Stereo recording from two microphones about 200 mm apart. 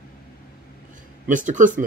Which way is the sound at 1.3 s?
40° right (ahead or behind).